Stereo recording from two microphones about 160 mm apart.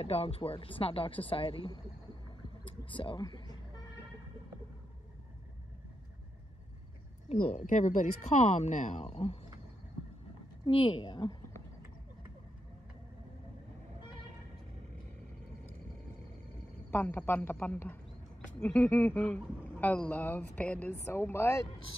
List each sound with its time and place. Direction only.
0.0 s speech: 40° left (ahead or behind)
2.6 s vehicle: 35° left (ahead or behind)
7.2 s speech: 50° left (ahead or behind)
10.6 s speech: 30° left (ahead or behind)
16.9 s speech: 10° left (ahead or behind)